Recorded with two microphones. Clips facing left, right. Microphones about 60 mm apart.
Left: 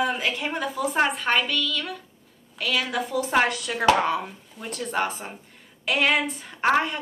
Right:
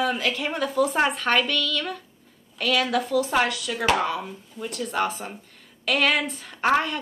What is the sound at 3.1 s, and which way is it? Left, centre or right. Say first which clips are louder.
A woman's voice: left 3 dB; left.